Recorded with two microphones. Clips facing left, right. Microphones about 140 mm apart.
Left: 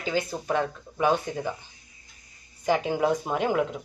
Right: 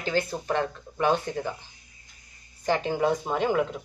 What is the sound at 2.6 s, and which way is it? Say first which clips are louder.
Speech: left 1 dB; 10° left (ahead or behind).